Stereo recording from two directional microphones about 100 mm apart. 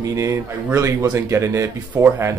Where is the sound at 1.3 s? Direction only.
30° right (ahead or behind).